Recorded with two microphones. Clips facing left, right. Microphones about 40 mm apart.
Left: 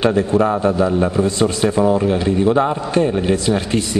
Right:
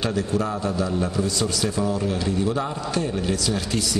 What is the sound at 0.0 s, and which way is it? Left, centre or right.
A man's voice, left.